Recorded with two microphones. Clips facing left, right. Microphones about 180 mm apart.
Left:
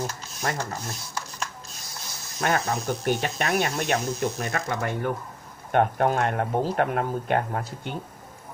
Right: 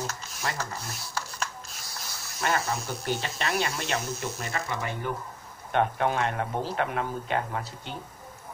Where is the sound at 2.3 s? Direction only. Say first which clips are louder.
Left 3 dB; 50° left (ahead or behind).